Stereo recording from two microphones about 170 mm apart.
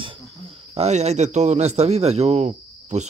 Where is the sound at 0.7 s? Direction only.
40° right (ahead or behind).